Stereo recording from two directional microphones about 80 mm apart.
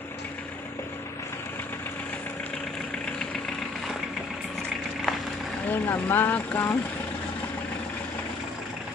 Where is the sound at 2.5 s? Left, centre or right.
Centre.